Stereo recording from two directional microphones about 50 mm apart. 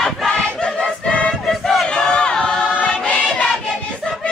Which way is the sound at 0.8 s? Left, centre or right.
Left.